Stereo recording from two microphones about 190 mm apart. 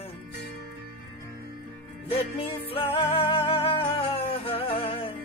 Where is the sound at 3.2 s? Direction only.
30° left (ahead or behind).